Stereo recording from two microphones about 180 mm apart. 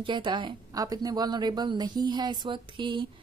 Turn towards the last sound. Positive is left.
turn(degrees=-25)  # may be behind; listen again after turning